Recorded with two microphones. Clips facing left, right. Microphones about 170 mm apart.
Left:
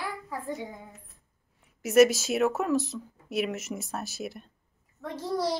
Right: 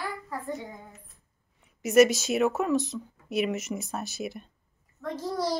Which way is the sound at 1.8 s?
5° left (ahead or behind).